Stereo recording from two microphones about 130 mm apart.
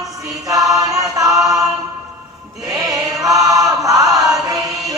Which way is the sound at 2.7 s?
25° right (ahead or behind).